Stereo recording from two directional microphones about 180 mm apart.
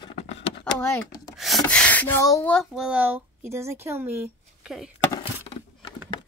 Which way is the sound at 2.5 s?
Centre (ahead or behind).